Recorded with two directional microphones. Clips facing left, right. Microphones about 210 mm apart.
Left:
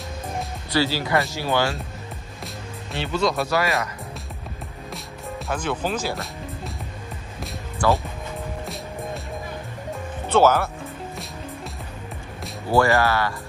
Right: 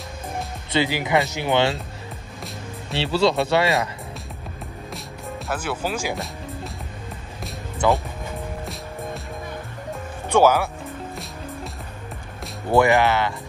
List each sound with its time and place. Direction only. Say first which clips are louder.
0.7 s speech: right 1 dB; 20° right (ahead or behind)
3.0 s speech: right 3 dB; 30° right (ahead or behind)
5.5 s speech: left 1 dB; 5° right (ahead or behind)
7.8 s speech: right 1 dB; 20° right (ahead or behind)
10.3 s speech: right 1 dB; 10° right (ahead or behind)
12.7 s speech: right 2 dB; 20° right (ahead or behind)